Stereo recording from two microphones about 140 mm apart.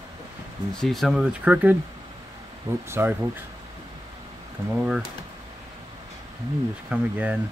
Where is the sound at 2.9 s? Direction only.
15° right (ahead or behind).